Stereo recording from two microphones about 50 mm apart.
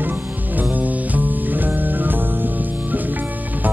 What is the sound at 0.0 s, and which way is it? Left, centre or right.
Music, right.